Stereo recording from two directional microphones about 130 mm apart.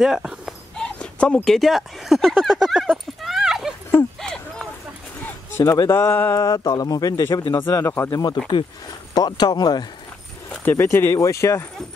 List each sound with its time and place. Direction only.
0.0 s a sound: 5° right (ahead or behind)
5.2 s speech: 20° left (ahead or behind)
9.1 s speech: 30° left (ahead or behind)
10.6 s speech: 15° left (ahead or behind)